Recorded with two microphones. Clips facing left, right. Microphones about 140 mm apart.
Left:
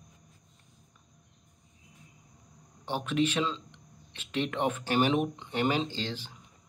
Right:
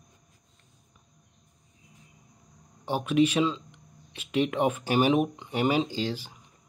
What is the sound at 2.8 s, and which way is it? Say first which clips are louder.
Speech: right 5 dB; 10° right (ahead or behind).